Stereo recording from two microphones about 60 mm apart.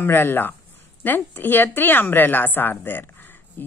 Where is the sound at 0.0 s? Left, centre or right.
Left.